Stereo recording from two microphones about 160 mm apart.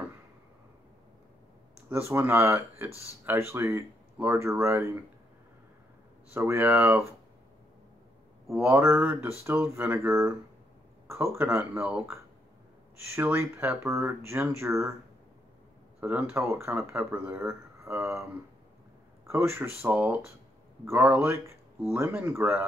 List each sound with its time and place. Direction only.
1.9 s speech: 15° right (ahead or behind)
6.3 s speech: 15° right (ahead or behind)
8.5 s speech: 15° right (ahead or behind)
11.3 s speech: 15° right (ahead or behind)
13.1 s speech: 15° right (ahead or behind)
16.0 s speech: 10° right (ahead or behind)
19.2 s speech: 15° right (ahead or behind)